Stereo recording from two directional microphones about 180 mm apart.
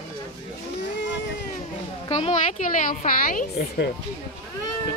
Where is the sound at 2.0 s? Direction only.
35° left (ahead or behind).